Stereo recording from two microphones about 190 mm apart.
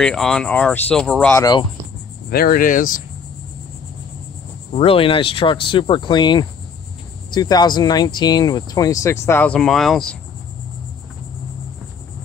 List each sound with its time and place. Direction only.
0.0 s speech: centre (ahead or behind)
1.4 s speech: 20° left (ahead or behind)
2.2 s speech: 50° left (ahead or behind)
4.7 s speech: 30° left (ahead or behind); by 10.1 s centre (ahead or behind)